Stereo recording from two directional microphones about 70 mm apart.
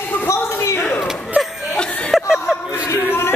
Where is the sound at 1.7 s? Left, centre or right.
Centre.